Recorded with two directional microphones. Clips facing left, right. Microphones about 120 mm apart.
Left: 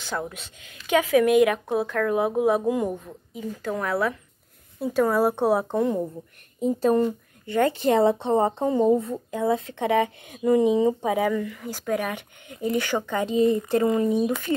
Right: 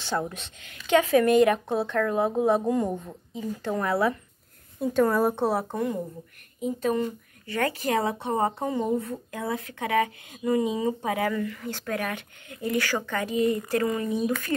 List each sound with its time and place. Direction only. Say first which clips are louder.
0.6 s speech: right 1 dB; 10° left (ahead or behind)
3.6 s speech: even; centre (ahead or behind); by 5.9 s 25° left (ahead or behind)
6.6 s speech: left 5 dB; 35° left (ahead or behind)
7.4 s speech: left 6 dB; 25° left (ahead or behind)